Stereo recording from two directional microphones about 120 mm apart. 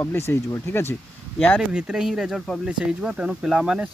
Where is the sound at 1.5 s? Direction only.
5° right (ahead or behind).